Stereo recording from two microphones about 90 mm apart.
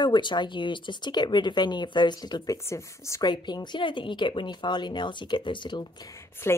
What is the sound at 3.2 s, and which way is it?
Speech, 55° left (ahead or behind).